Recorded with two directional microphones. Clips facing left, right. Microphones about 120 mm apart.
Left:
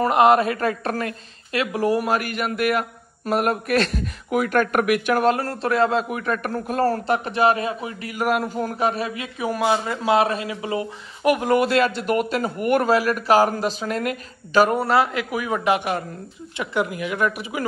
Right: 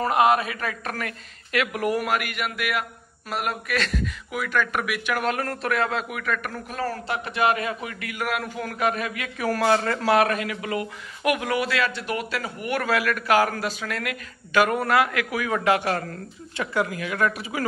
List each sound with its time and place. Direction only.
0.0 s a man's voice: 25° left (ahead or behind)